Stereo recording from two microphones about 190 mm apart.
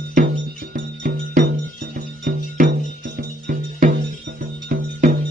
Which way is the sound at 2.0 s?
45° right (ahead or behind).